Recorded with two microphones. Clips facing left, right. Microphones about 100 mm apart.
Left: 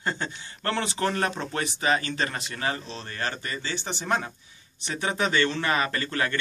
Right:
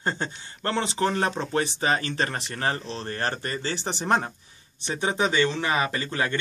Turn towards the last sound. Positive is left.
turn(degrees=-20)  # may be behind; listen again after turning